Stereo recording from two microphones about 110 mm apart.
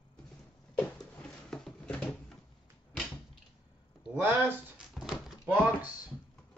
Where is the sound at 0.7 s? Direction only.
5° left (ahead or behind).